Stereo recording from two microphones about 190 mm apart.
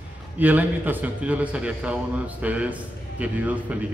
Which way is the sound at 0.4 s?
10° right (ahead or behind).